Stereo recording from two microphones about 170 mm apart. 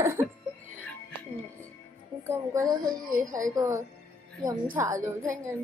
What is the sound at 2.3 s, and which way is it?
Speech, 20° right (ahead or behind).